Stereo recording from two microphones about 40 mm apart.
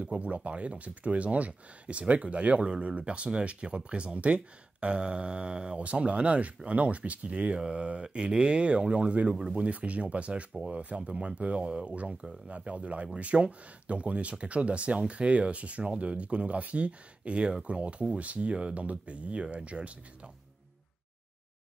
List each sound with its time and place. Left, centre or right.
0.0 s speech: right
9.3 s speech: centre
9.6 s speech: right